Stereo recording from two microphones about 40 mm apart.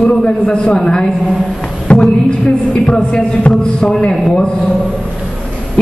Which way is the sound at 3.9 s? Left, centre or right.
Centre.